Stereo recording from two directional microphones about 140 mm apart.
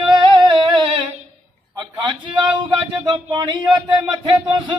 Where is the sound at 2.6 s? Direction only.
35° right (ahead or behind).